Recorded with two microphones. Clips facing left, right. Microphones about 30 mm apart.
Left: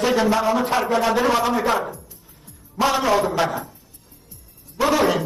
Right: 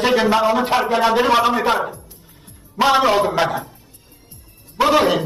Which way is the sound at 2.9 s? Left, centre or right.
Right.